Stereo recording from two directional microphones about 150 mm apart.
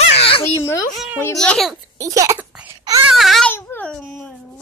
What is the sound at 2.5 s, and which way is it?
Baby cry, 10° right (ahead or behind).